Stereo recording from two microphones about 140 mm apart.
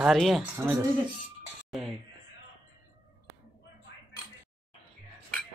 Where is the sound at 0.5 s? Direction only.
15° right (ahead or behind).